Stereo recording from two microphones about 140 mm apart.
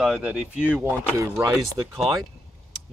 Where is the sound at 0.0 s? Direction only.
5° right (ahead or behind).